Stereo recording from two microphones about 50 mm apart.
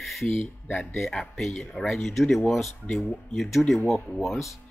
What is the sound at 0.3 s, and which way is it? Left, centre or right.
Speech, left.